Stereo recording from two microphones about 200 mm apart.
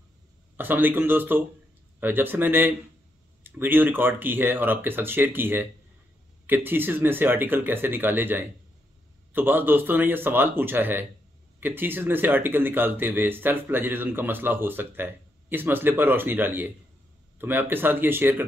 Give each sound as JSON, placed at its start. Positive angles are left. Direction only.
{"t": 0.6, "sound": "speech", "side_deg": -10}